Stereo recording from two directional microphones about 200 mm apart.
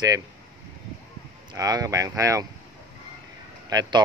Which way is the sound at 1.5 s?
15° right (ahead or behind).